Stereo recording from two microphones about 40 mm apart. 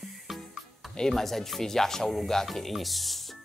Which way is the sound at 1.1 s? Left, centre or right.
Centre.